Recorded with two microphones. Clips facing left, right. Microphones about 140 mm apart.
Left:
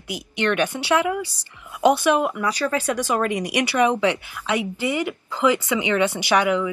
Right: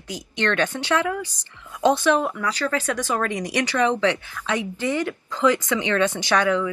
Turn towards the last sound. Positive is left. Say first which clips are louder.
# left 1 dB
turn(degrees=10)  # may be behind; listen again after turning